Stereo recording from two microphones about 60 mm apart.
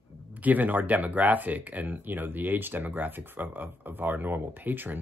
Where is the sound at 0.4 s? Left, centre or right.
Right.